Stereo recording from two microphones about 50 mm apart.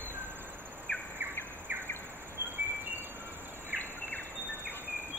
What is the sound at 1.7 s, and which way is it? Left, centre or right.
Bird, right.